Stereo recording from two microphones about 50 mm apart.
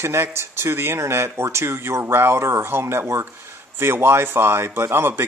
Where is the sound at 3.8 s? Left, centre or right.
Right.